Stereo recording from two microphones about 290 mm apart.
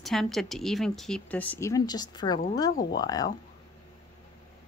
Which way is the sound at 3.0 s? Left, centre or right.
Centre.